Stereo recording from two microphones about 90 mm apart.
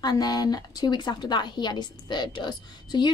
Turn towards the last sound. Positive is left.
turn(degrees=55)  # may be behind; listen again after turning